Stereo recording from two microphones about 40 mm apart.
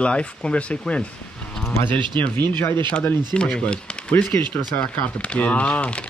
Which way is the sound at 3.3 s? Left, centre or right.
Left.